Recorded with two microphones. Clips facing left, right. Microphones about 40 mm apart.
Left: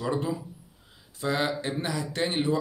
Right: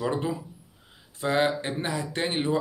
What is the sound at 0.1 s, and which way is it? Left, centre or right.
Speech, right.